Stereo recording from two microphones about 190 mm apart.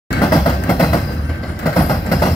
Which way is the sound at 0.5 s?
5° left (ahead or behind).